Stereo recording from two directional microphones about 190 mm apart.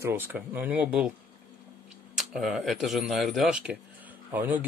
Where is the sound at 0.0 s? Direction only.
10° right (ahead or behind).